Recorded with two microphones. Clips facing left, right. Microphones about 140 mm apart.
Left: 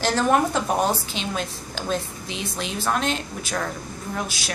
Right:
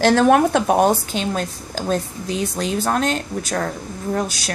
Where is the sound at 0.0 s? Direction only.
60° right (ahead or behind).